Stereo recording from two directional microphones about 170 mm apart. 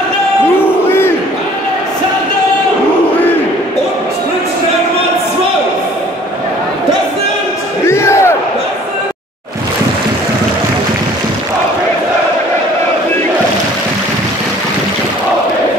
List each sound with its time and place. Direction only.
7.8 s crowd: 15° left (ahead or behind)